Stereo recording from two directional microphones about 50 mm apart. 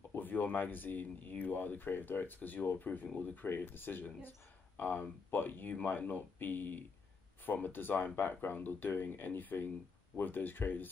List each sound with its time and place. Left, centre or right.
0.1 s speech: left